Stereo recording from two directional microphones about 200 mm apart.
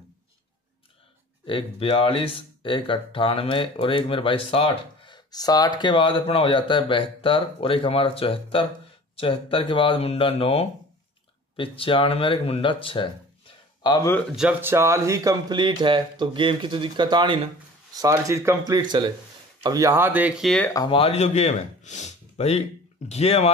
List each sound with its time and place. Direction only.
1.4 s speech: 25° left (ahead or behind)
14.3 s speech: 5° right (ahead or behind)
20.7 s speech: 25° left (ahead or behind)